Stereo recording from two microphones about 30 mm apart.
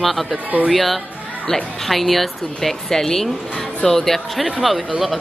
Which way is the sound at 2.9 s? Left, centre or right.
Centre.